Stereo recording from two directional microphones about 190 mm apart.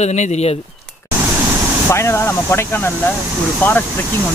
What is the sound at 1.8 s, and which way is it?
Speech, 15° left (ahead or behind).